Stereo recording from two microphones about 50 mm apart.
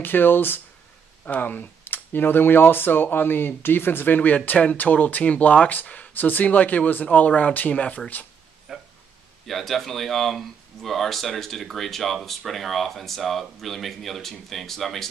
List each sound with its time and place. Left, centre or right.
0.0 s speech: left
1.2 s speech: left
8.7 s a sound: centre
9.5 s speech: centre